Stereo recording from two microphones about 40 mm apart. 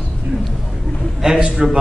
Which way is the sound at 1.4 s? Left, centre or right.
Centre.